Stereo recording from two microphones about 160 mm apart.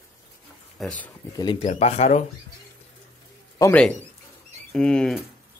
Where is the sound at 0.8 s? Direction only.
Centre (ahead or behind).